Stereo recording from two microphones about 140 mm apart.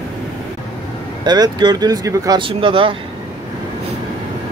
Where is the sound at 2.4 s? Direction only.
40° right (ahead or behind).